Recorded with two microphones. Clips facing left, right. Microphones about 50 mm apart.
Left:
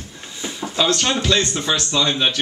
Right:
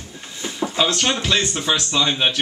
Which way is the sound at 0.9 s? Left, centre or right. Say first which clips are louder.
Left 1 dB; centre.